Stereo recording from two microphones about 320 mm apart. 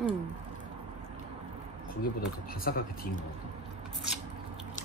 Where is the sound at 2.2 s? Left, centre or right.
Left.